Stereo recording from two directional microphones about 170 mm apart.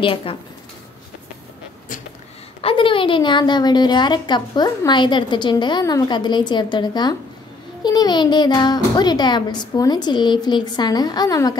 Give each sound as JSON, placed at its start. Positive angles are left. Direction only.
{"t": 0.0, "sound": "speech", "side_deg": 30}
{"t": 2.6, "sound": "a woman's voice", "side_deg": 30}